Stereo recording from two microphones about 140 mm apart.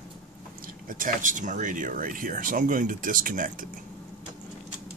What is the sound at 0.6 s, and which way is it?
Speech, 80° right.